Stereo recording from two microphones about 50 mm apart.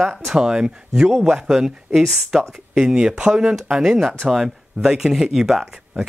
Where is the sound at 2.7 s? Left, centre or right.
Centre.